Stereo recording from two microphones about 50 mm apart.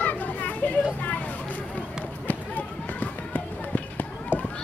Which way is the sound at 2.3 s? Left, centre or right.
Left.